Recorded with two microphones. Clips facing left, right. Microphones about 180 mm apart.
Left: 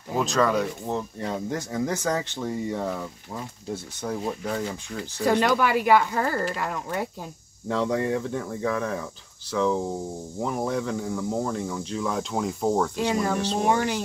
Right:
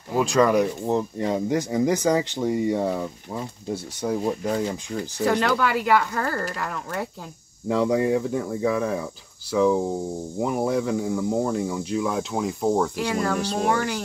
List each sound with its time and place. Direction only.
0.1 s speech: 10° right (ahead or behind)
5.2 s speech: 15° left (ahead or behind)
7.6 s speech: 10° right (ahead or behind)
12.9 s speech: 20° left (ahead or behind)